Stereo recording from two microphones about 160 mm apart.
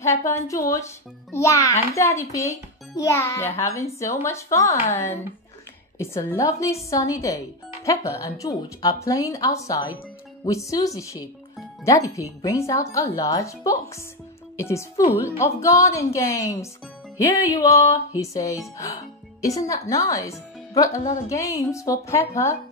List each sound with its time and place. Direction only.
0.2 s a child's voice: 20° left (ahead or behind)